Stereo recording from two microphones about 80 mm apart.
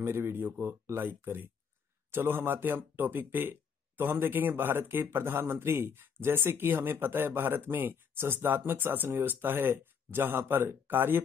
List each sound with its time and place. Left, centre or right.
0.0 s speech: right